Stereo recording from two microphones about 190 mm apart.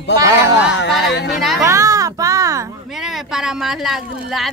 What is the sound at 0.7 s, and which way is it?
Speech, 65° left (ahead or behind).